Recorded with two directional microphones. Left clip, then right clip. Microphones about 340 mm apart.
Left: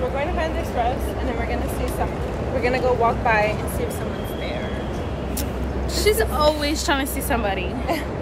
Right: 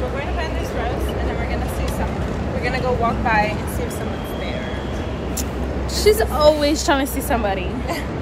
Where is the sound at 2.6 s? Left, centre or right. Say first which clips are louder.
Left 1 dB; centre.